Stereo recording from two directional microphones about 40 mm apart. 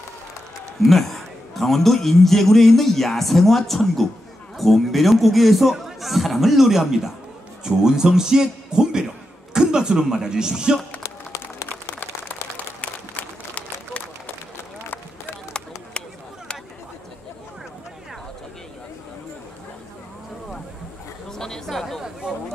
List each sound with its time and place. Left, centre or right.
0.8 s a man's voice: centre
11.7 s applause: left
21.3 s a sound: centre